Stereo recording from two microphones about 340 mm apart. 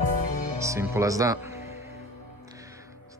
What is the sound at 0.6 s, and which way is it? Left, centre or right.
Speech, centre.